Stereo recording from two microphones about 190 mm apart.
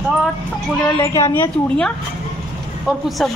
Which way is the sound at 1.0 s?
15° left (ahead or behind).